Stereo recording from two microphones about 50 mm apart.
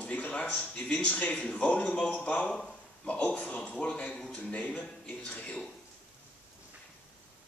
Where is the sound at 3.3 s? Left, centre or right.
Left.